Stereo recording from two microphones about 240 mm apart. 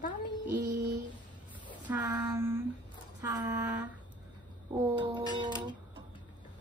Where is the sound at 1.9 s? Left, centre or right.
Centre.